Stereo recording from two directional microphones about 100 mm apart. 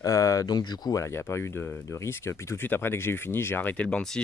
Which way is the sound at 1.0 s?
25° left (ahead or behind).